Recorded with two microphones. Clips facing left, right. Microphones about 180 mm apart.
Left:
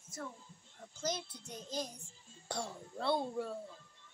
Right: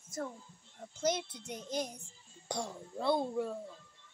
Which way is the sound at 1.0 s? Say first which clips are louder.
Right 6 dB; 20° right (ahead or behind).